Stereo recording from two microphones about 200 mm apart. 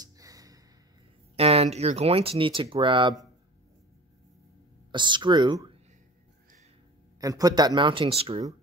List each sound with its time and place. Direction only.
0.0 s music: 20° right (ahead or behind)
1.3 s speech: 30° right (ahead or behind)
4.9 s speech: 25° right (ahead or behind)
7.2 s speech: 15° right (ahead or behind)